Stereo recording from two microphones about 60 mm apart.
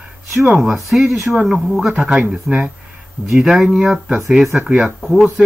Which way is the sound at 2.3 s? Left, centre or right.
Centre.